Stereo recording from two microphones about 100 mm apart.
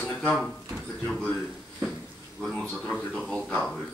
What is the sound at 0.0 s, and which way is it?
Drawer open or close, 10° left (ahead or behind).